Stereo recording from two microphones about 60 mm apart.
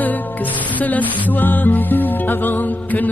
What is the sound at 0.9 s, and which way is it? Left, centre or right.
Music, left.